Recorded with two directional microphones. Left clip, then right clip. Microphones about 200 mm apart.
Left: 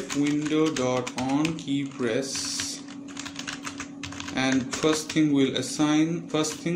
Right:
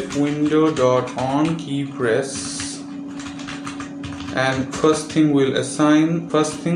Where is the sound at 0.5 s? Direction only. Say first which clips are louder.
Right 10 dB; 35° left (ahead or behind).